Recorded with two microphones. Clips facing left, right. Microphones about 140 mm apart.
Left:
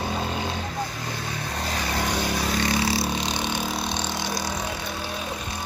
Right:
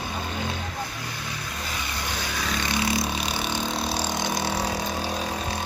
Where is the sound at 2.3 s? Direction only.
30° left (ahead or behind).